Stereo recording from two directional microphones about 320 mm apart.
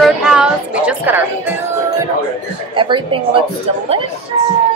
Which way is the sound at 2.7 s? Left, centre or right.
Centre.